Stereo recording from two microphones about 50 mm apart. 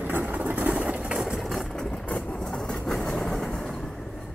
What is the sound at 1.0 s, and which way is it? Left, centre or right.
Engine, centre.